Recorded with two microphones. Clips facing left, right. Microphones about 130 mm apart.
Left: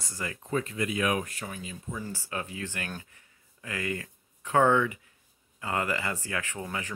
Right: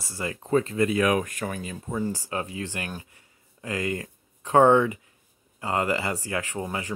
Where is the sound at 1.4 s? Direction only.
60° right (ahead or behind).